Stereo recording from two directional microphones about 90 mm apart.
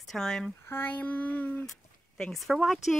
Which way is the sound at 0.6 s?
25° left (ahead or behind).